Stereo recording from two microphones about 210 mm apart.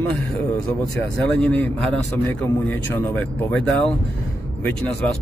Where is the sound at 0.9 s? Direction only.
5° left (ahead or behind).